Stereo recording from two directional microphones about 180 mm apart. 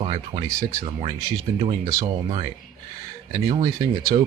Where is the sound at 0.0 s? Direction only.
35° right (ahead or behind).